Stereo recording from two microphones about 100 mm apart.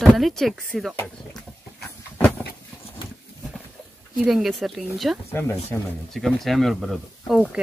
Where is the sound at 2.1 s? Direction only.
15° left (ahead or behind).